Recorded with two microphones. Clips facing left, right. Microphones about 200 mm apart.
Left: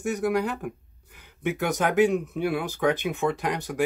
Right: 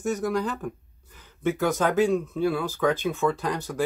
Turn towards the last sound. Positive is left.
turn(degrees=15)  # may be behind; listen again after turning